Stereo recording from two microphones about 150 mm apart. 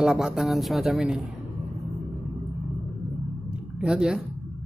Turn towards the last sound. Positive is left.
turn(degrees=-5)  # may be behind; listen again after turning